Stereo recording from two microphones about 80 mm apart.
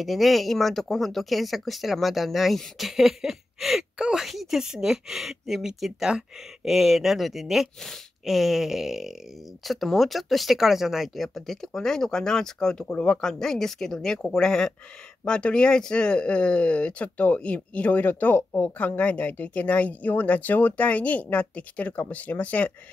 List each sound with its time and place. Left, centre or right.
0.0 s speech: centre